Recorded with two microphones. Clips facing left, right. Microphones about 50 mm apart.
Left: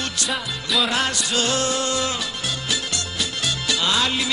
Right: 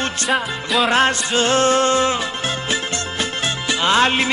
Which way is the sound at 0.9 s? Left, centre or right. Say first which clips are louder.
Right 6 dB; right.